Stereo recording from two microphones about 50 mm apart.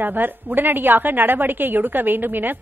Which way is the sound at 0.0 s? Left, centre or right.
Right.